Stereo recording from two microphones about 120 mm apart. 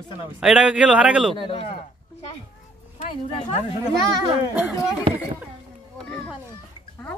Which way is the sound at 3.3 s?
50° left (ahead or behind).